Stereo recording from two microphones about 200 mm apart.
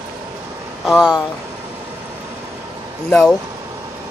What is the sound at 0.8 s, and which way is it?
Speech, centre (ahead or behind).